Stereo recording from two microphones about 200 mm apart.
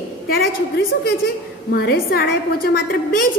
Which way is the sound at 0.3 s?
50° left (ahead or behind).